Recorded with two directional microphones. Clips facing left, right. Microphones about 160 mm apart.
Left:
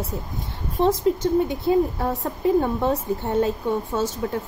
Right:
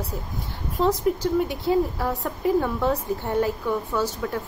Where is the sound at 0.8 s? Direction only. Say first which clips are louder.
Left 2 dB; 25° left (ahead or behind).